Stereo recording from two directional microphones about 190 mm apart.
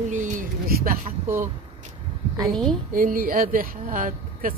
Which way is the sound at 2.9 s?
50° right (ahead or behind).